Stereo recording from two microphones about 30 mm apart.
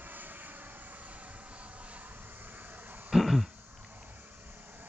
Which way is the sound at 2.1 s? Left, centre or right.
Right.